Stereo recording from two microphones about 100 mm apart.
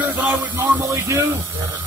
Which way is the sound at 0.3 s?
25° right (ahead or behind).